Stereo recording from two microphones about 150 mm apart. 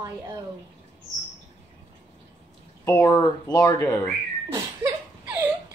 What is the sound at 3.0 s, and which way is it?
Speech, 25° left (ahead or behind).